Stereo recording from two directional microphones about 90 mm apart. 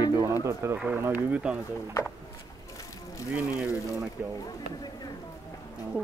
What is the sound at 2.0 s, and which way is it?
Speech, 45° left (ahead or behind).